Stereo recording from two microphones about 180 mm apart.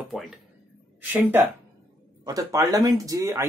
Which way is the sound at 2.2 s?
20° right (ahead or behind).